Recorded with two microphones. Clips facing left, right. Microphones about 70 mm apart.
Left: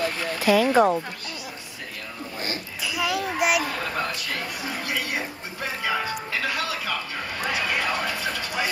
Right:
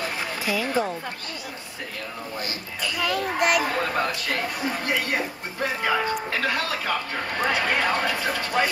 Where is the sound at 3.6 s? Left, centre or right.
Right.